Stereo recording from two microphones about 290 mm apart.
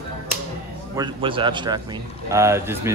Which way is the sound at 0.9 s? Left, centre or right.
Centre.